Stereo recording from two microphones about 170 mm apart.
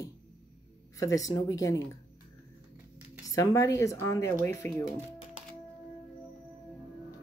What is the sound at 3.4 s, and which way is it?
Speech, 20° left (ahead or behind).